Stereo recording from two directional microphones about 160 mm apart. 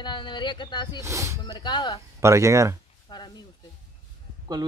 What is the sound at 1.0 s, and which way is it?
Speech, 20° right (ahead or behind).